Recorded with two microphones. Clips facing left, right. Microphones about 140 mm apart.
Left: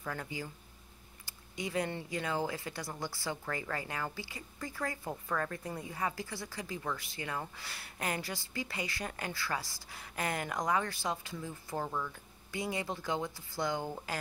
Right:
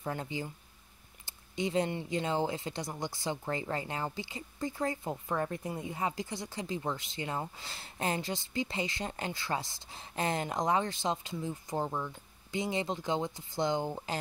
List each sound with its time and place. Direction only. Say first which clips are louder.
0.0 s speech: right 3 dB; 25° right (ahead or behind)